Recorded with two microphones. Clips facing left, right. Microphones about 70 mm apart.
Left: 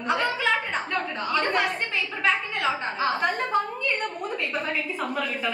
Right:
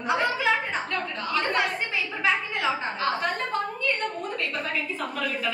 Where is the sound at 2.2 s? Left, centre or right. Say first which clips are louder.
Left 1 dB; centre.